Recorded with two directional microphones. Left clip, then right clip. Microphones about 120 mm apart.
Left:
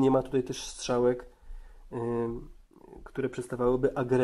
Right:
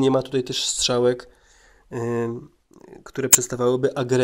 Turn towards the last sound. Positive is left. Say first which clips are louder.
# right 6 dB
turn(degrees=-20)  # may be behind; listen again after turning